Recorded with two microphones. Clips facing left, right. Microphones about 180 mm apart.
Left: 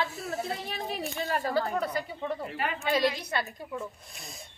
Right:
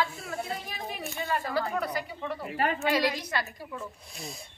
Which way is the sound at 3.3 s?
15° left (ahead or behind).